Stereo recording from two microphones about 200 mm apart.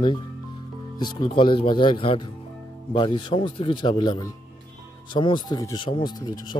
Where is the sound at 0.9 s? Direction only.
20° left (ahead or behind).